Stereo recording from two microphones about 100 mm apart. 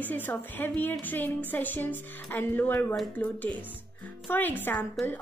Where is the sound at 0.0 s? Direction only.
20° left (ahead or behind).